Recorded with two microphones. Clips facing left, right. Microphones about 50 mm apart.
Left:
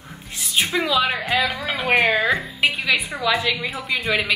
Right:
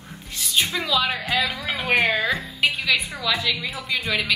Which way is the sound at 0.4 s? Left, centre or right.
Centre.